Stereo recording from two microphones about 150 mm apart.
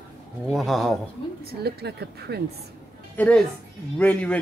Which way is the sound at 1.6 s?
90° right.